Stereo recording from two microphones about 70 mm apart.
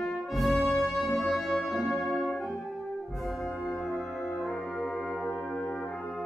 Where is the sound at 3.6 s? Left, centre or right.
Centre.